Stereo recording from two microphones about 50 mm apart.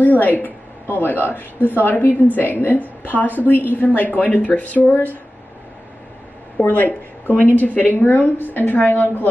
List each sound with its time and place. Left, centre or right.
0.0 s a sound: left
0.9 s a woman's voice: left
6.7 s a woman's voice: left